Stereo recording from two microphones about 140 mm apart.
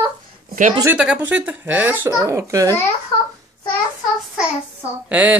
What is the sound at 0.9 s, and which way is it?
Speech, 5° right (ahead or behind).